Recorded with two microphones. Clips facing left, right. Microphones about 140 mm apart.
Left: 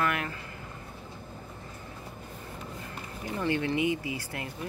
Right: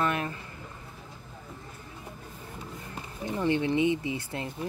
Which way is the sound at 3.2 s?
20° right (ahead or behind).